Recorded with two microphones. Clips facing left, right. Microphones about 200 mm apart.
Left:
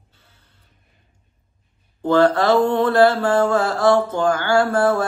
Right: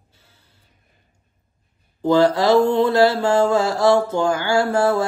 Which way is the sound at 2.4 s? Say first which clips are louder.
Right 1 dB; 15° right (ahead or behind).